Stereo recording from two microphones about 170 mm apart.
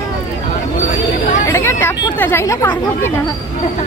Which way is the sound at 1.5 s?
15° left (ahead or behind).